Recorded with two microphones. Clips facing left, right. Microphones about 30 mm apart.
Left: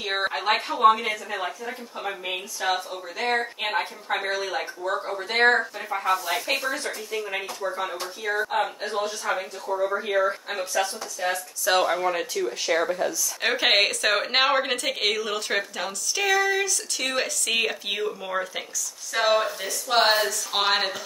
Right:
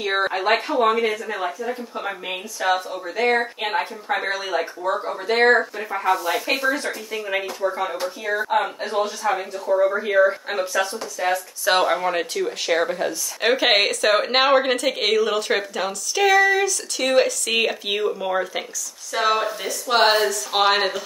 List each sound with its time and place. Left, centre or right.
0.0 s speech: centre
11.6 s speech: right
13.4 s speech: centre